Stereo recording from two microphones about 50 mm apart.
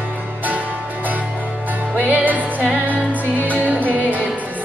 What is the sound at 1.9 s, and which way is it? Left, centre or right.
Music, right.